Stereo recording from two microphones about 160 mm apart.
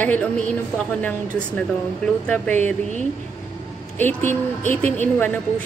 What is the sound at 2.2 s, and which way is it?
Speech, 10° left (ahead or behind).